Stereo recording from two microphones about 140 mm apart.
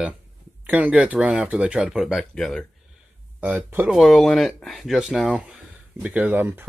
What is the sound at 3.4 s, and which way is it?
Speech, 10° right (ahead or behind).